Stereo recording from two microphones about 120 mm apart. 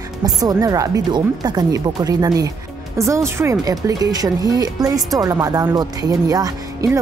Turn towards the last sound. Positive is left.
turn(degrees=-30)  # may be behind; listen again after turning